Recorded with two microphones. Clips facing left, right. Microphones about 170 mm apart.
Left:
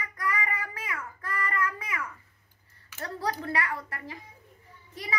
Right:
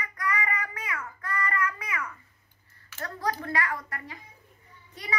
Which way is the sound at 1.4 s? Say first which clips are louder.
Even; 25° left (ahead or behind).